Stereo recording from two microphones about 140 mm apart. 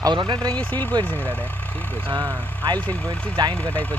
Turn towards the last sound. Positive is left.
turn(degrees=10)  # may be behind; listen again after turning